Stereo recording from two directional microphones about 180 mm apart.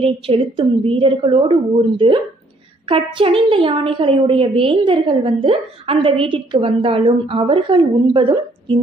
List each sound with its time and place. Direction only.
0.0 s a woman's voice: 30° right (ahead or behind)